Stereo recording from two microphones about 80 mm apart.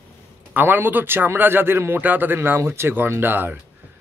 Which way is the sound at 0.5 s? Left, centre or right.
Right.